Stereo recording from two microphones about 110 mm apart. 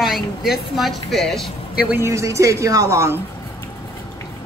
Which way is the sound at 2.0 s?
25° right (ahead or behind).